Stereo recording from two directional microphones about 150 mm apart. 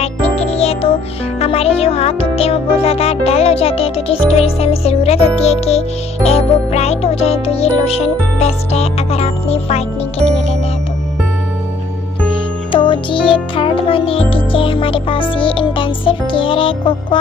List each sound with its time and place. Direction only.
0.0 s music: 40° left (ahead or behind)
12.7 s music: 35° left (ahead or behind)